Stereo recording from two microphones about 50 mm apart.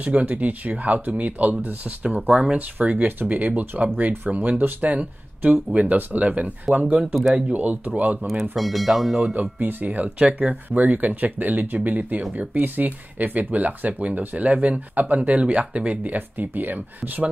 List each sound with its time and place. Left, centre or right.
0.0 s speech: right
2.5 s speech: right
8.3 s speech: centre
9.3 s speech: right